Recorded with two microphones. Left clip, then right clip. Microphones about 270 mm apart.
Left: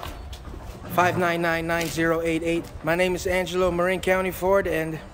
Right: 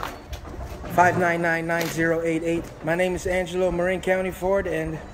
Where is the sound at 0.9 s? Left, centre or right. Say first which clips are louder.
Right 2 dB; centre.